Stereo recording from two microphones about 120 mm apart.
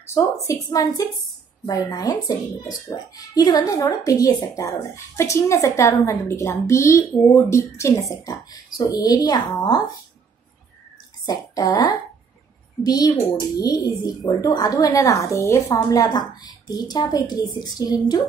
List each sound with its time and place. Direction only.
0.0 s a woman's voice: 20° left (ahead or behind)
11.2 s a woman's voice: 30° left (ahead or behind)